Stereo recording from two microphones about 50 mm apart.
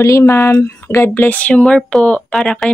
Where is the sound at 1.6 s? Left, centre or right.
Centre.